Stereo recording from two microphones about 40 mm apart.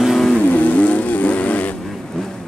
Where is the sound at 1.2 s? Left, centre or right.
Left.